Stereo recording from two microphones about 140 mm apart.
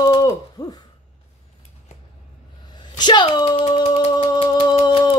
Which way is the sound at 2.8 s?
30° left (ahead or behind).